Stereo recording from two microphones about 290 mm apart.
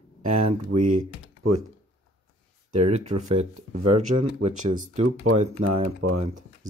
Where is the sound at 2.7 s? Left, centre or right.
Right.